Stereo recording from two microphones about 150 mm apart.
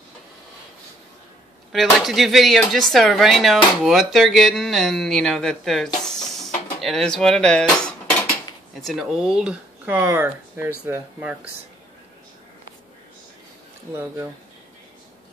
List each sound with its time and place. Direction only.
1.7 s speech: centre (ahead or behind)
13.9 s speech: 15° right (ahead or behind)